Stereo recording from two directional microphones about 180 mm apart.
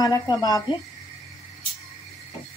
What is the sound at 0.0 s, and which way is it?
Speech, 20° left (ahead or behind).